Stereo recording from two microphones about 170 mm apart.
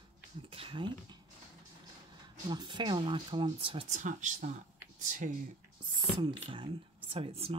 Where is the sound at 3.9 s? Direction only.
45° right (ahead or behind).